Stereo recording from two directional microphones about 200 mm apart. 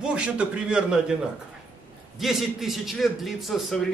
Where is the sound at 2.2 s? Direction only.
Centre (ahead or behind).